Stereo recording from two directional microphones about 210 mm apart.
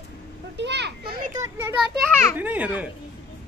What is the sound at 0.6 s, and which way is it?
Children playing, 55° right (ahead or behind).